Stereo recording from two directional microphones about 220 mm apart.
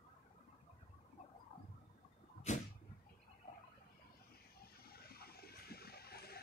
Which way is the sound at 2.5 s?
30° left (ahead or behind).